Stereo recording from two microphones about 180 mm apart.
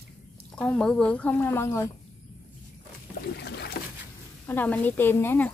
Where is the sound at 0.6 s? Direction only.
5° left (ahead or behind).